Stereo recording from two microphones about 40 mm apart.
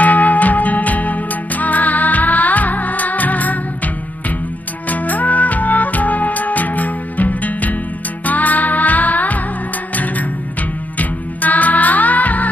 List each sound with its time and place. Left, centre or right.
0.0 s music: left
11.0 s music: left